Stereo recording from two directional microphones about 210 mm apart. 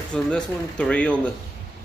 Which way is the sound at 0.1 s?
5° left (ahead or behind).